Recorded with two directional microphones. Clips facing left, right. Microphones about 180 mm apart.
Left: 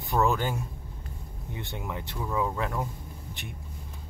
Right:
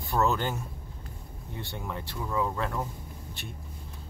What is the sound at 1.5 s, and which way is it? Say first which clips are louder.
Speech: left 1 dB; 15° left (ahead or behind).